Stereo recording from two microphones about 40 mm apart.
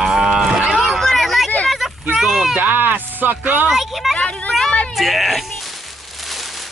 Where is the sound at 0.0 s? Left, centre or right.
Centre.